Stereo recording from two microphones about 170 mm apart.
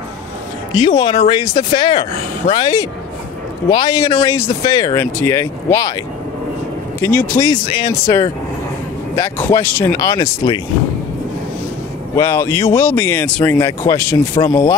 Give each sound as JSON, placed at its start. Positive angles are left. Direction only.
{"t": 0.7, "sound": "speech", "side_deg": 25}
{"t": 7.0, "sound": "speech", "side_deg": 15}
{"t": 12.2, "sound": "speech", "side_deg": 15}